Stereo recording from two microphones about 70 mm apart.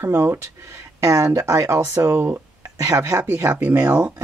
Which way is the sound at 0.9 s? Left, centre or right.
Right.